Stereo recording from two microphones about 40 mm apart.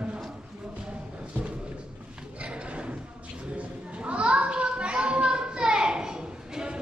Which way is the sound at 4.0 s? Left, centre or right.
Right.